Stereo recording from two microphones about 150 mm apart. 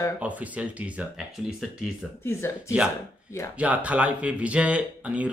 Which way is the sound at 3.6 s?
10° right (ahead or behind).